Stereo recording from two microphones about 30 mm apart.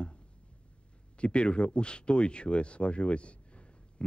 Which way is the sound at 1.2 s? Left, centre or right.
Left.